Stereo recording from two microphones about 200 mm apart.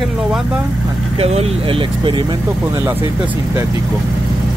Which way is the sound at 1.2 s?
30° right (ahead or behind).